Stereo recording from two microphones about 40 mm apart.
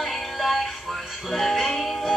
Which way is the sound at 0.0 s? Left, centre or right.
Centre.